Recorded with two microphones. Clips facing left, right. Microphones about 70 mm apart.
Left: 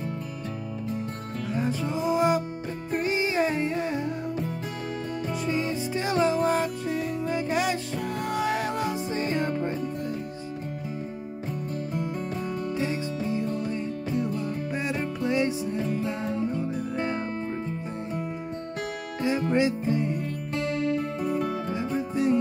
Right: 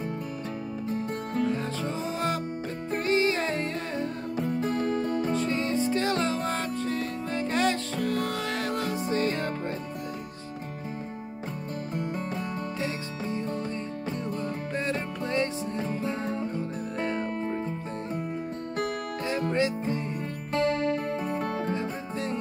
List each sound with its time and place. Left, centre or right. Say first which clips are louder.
1.5 s music: left 2 dB; centre
5.3 s music: right 1 dB; centre
13.3 s music: left 1 dB; right
13.7 s music: left 3 dB; centre
17.0 s music: even; centre
19.2 s music: left 4 dB; centre
20.5 s music: right 2 dB; right
21.7 s music: left 5 dB; centre